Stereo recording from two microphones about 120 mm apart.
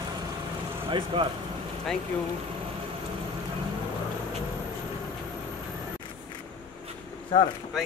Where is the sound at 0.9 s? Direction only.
45° right (ahead or behind).